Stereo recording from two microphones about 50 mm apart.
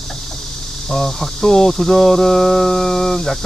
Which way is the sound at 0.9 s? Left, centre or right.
Centre.